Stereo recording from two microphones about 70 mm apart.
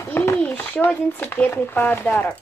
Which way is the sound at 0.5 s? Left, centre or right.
Left.